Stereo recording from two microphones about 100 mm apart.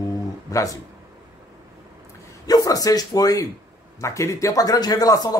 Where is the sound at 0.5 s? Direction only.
35° left (ahead or behind).